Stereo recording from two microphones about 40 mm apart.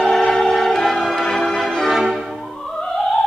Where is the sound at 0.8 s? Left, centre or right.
Centre.